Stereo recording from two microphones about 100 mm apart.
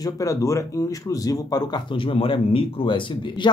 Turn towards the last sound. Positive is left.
turn(degrees=55)  # may be behind; listen again after turning